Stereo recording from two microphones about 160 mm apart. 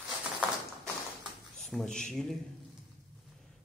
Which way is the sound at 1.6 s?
Centre (ahead or behind).